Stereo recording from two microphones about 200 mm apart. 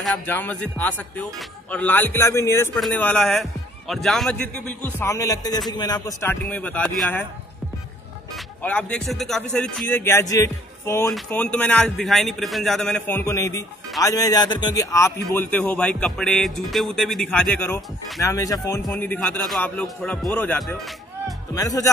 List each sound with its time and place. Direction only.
0.0 s speech: 5° left (ahead or behind)
8.6 s speech: 5° left (ahead or behind)
18.2 s speech: 15° left (ahead or behind)
18.8 s speech: 5° left (ahead or behind)
21.5 s speech: 15° left (ahead or behind)